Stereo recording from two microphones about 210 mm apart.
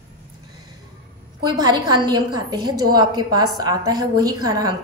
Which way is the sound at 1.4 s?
20° right (ahead or behind).